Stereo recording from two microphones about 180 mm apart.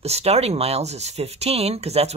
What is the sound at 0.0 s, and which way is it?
Speech, 35° right (ahead or behind).